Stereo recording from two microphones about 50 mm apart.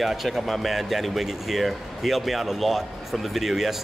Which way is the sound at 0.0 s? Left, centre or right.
Centre.